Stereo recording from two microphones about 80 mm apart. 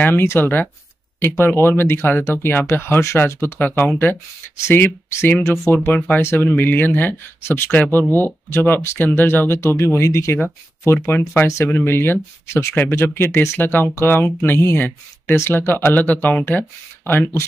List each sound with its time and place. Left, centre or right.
0.0 s speech: left
3.4 s speech: left
10.9 s speech: left